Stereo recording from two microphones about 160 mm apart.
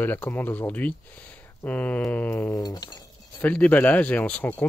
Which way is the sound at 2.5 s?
25° left (ahead or behind).